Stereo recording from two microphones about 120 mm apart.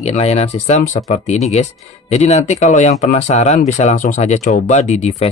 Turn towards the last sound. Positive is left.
turn(degrees=70)  # may be behind; listen again after turning